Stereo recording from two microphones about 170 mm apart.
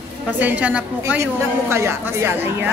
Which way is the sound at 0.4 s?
10° right (ahead or behind).